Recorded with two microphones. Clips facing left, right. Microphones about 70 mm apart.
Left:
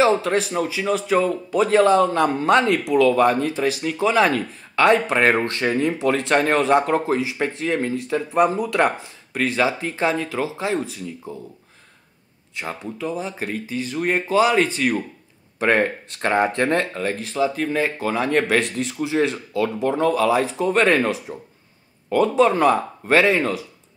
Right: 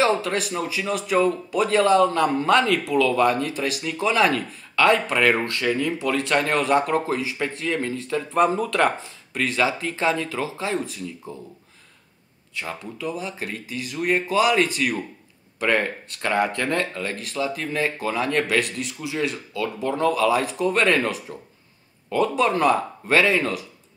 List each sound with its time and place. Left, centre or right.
0.0 s speech: left
8.3 s speech: centre
9.3 s speech: left
12.9 s speech: left